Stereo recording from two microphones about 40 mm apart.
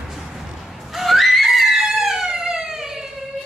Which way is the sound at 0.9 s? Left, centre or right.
Centre.